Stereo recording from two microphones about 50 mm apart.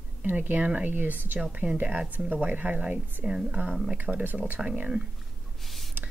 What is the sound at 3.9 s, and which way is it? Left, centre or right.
Speech, right.